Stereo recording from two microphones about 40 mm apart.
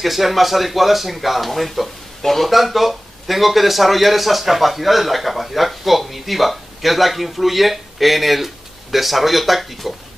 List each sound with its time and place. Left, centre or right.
0.0 s speech: centre